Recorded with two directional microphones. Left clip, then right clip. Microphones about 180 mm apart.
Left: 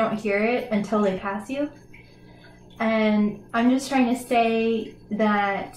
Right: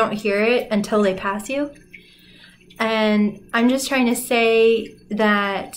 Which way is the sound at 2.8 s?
30° right (ahead or behind).